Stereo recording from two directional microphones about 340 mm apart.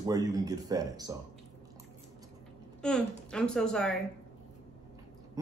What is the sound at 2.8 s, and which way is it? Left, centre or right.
Speech, centre.